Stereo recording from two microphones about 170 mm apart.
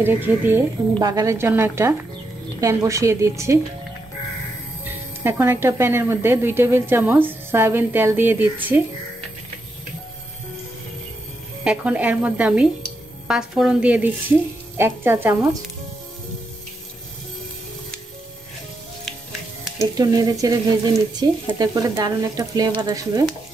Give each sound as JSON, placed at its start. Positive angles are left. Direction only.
{"t": 0.0, "sound": "a woman's voice", "side_deg": -10}
{"t": 5.2, "sound": "a woman's voice", "side_deg": -15}
{"t": 11.6, "sound": "a woman's voice", "side_deg": -5}
{"t": 19.8, "sound": "speech", "side_deg": -20}